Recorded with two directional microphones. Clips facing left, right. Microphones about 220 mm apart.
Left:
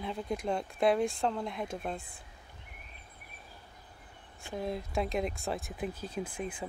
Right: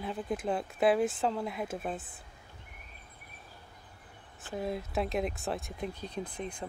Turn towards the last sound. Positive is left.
turn(degrees=5)  # may be behind; listen again after turning